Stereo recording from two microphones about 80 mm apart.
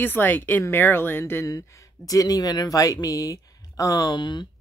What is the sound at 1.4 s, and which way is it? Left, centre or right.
Speech, left.